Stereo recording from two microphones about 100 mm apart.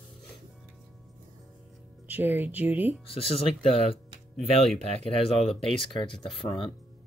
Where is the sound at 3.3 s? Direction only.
75° left (ahead or behind).